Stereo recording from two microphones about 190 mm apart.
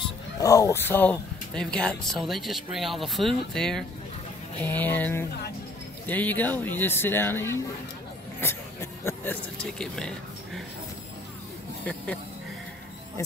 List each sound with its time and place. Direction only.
0.4 s speech: 15° left (ahead or behind)
11.8 s speech: 5° left (ahead or behind)